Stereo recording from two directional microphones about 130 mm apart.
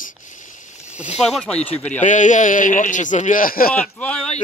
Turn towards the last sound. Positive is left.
turn(degrees=10)  # may be behind; listen again after turning